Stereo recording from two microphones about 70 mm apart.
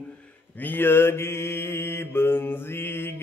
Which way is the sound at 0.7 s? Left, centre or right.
Left.